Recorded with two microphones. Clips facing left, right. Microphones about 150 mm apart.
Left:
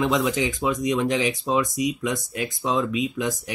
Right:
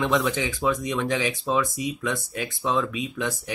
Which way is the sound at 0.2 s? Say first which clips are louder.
Left 2 dB; 20° left (ahead or behind).